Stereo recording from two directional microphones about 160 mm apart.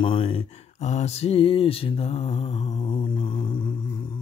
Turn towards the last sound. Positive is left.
turn(degrees=30)  # may be behind; listen again after turning